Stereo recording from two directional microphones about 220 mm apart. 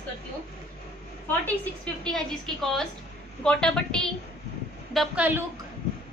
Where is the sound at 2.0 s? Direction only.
Centre (ahead or behind).